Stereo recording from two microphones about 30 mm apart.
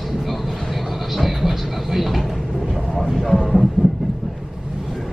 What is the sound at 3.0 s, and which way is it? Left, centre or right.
Speech, centre.